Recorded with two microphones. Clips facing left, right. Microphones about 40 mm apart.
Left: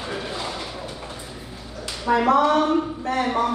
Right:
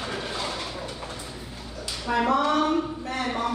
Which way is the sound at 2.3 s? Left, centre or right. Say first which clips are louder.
Left 4 dB; left.